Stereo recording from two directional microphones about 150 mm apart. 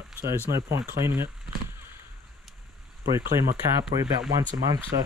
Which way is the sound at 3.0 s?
20° right (ahead or behind).